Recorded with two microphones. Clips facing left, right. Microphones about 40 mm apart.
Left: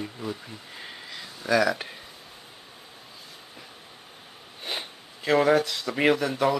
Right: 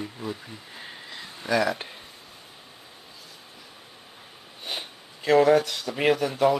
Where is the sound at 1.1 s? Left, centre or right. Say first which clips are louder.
Left 1 dB; centre.